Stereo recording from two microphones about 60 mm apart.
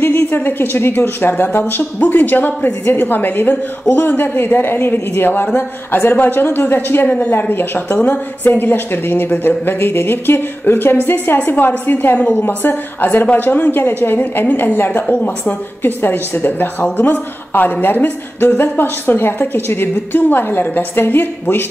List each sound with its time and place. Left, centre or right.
0.0 s a woman's voice: left